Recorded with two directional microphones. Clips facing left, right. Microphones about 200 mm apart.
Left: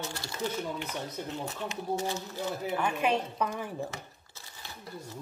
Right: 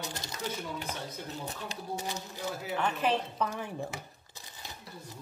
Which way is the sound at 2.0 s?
15° right (ahead or behind).